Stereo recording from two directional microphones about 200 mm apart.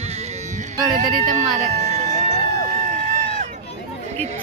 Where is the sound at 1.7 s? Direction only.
35° right (ahead or behind).